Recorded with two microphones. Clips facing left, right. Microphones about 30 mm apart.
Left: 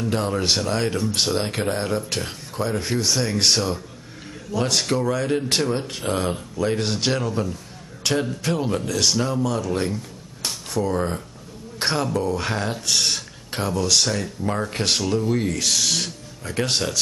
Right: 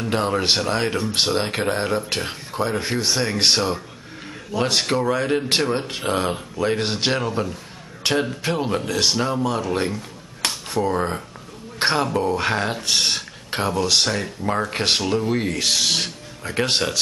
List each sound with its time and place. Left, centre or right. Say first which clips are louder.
0.0 s speech: right 2 dB; right